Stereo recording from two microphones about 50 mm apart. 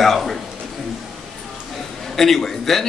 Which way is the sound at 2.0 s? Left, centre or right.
Centre.